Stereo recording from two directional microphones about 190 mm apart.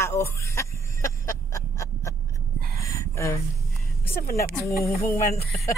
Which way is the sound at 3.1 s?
15° left (ahead or behind).